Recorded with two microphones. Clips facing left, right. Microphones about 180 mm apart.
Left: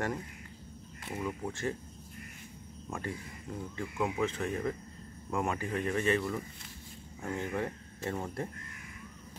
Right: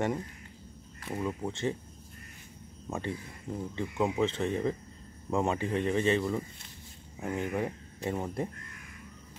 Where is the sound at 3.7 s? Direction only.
25° right (ahead or behind).